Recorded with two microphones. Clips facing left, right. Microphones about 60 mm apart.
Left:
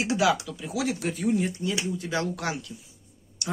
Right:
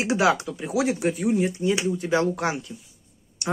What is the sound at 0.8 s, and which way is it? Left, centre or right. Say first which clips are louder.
Speech: right 5 dB; right.